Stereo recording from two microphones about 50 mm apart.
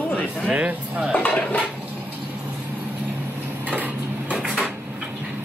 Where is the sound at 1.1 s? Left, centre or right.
Left.